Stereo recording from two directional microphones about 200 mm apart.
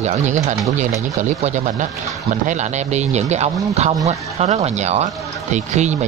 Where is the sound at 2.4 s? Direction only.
35° right (ahead or behind).